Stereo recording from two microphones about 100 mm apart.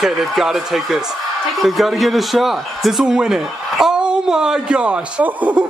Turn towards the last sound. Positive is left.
turn(degrees=-15)  # may be behind; listen again after turning